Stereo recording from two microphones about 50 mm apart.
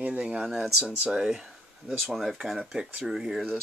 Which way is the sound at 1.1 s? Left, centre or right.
Centre.